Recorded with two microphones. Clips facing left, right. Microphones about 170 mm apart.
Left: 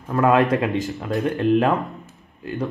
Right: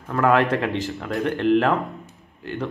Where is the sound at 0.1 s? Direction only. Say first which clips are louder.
Left 2 dB; 15° left (ahead or behind).